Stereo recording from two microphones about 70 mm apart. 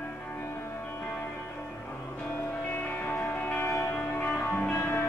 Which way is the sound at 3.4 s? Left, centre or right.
Left.